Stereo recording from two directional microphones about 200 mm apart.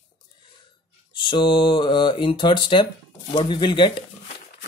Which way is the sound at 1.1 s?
25° left (ahead or behind).